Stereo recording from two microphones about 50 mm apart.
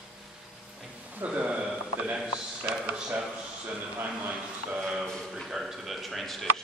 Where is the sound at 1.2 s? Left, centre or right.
Right.